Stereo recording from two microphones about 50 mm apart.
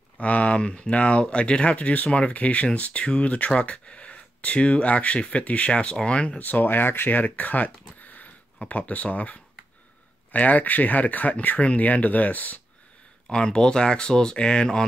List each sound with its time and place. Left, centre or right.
0.2 s speech: left
6.4 s speech: left
13.3 s speech: centre